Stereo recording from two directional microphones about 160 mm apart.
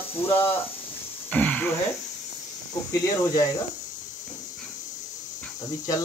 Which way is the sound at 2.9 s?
20° left (ahead or behind).